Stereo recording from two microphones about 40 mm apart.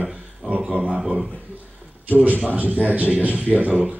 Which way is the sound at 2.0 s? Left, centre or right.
Right.